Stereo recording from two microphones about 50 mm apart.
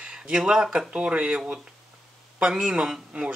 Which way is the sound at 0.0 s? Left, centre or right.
Centre.